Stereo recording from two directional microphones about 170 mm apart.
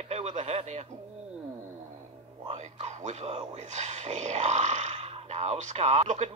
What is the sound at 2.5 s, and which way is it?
Speech, 45° right (ahead or behind).